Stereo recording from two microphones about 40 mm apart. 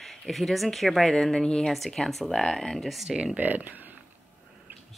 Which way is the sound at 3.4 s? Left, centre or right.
Right.